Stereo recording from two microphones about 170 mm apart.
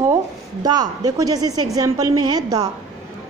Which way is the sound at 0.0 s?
20° right (ahead or behind).